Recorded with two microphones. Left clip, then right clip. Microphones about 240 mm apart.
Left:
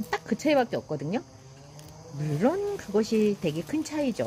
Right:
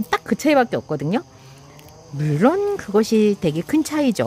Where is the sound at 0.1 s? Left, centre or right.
Right.